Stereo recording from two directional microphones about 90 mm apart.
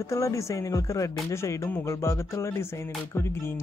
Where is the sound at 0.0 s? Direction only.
35° left (ahead or behind).